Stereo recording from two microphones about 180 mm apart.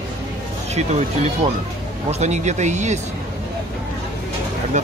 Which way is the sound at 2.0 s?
40° right (ahead or behind).